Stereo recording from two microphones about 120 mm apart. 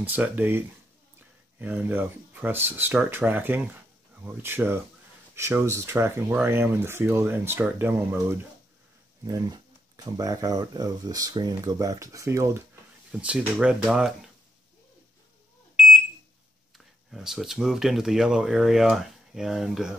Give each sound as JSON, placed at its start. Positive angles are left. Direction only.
{"t": 0.0, "sound": "speech", "side_deg": -10}
{"t": 9.2, "sound": "speech", "side_deg": -30}
{"t": 13.1, "sound": "speech", "side_deg": -10}
{"t": 16.7, "sound": "speech", "side_deg": 0}